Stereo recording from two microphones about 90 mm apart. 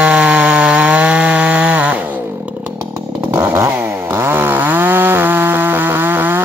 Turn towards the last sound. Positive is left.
turn(degrees=-20)  # may be behind; listen again after turning